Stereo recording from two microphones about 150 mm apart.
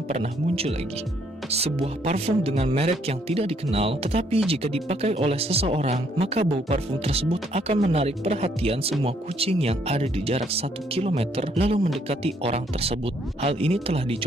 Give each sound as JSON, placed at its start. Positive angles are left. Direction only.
{"t": 0.1, "sound": "speech", "side_deg": -45}